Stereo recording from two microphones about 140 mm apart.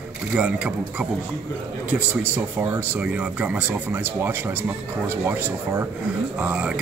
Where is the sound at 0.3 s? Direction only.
10° right (ahead or behind).